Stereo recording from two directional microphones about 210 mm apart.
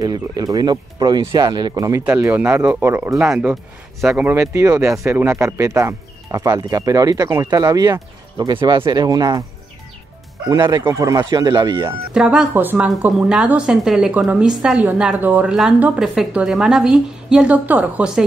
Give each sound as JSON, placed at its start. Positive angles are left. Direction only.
{"t": 0.0, "sound": "speech", "side_deg": -15}
{"t": 10.5, "sound": "speech", "side_deg": -15}
{"t": 12.1, "sound": "a woman's voice", "side_deg": -5}